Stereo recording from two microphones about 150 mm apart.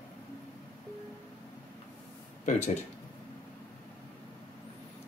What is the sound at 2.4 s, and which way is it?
Speech, 50° left (ahead or behind).